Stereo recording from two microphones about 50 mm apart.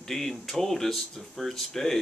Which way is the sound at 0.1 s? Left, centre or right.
Centre.